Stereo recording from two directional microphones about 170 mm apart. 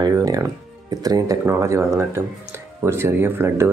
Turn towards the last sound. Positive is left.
turn(degrees=-15)  # may be behind; listen again after turning